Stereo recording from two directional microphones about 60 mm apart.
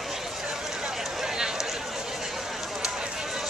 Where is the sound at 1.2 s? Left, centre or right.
Centre.